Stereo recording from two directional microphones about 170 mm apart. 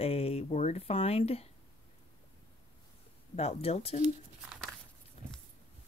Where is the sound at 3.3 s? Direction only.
35° left (ahead or behind).